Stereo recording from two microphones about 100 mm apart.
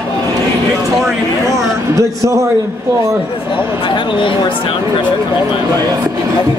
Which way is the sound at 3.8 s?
55° left (ahead or behind).